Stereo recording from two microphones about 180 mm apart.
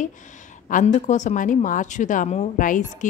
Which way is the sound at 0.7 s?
45° left (ahead or behind).